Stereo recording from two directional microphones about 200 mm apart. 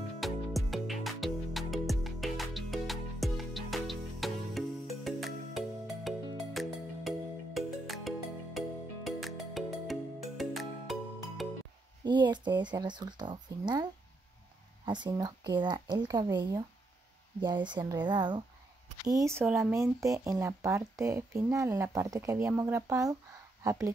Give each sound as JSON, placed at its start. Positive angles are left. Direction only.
{"t": 0.2, "sound": "music", "side_deg": 0}
{"t": 12.0, "sound": "speech", "side_deg": -20}
{"t": 14.9, "sound": "speech", "side_deg": -20}